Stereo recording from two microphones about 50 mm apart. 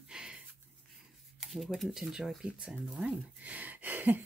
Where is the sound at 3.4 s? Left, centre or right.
Right.